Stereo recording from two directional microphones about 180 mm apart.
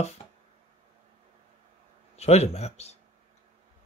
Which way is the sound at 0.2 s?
35° left (ahead or behind).